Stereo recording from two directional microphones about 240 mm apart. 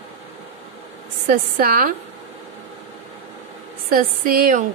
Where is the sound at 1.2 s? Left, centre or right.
Right.